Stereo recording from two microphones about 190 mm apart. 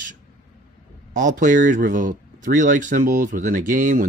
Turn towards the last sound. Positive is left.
turn(degrees=-45)  # may be behind; listen again after turning